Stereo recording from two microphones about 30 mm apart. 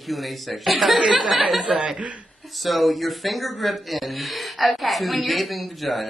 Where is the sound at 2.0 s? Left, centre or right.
Right.